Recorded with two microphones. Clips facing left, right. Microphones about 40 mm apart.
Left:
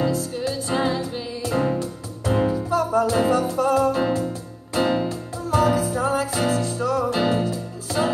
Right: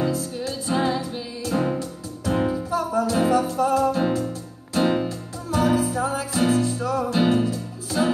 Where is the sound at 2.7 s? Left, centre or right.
Left.